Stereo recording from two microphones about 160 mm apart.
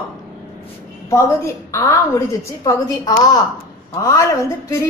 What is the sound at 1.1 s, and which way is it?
A woman's voice, 20° left (ahead or behind).